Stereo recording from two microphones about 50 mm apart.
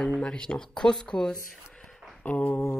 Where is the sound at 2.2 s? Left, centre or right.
Left.